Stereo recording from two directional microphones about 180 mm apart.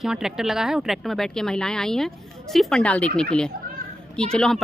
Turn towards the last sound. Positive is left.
turn(degrees=5)  # may be behind; listen again after turning